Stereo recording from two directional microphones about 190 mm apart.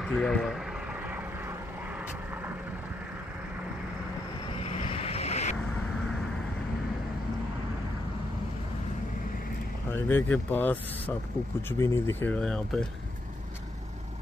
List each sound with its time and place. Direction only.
0.0 s speech: 5° left (ahead or behind)
4.6 s vehicle: 30° left (ahead or behind)
9.8 s speech: 10° left (ahead or behind)